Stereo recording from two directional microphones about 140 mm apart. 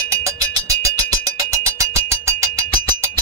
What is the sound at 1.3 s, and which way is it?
Music, 25° right (ahead or behind).